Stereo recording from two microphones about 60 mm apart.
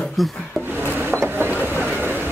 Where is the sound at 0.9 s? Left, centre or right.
Right.